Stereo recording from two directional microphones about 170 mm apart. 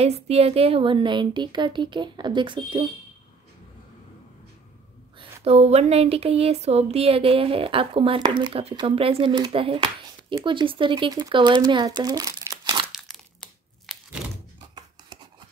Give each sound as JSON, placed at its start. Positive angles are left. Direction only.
{"t": 0.0, "sound": "a woman's voice", "side_deg": -35}
{"t": 5.4, "sound": "a woman's voice", "side_deg": -35}
{"t": 12.9, "sound": "crumpling", "side_deg": 0}